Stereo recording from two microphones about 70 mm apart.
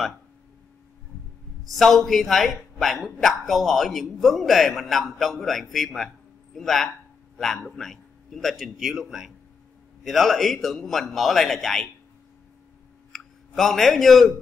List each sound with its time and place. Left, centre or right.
1.7 s a man's voice: centre
13.1 s speech: centre